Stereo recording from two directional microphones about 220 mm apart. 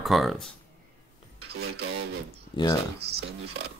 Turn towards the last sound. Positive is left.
turn(degrees=-45)  # may be behind; listen again after turning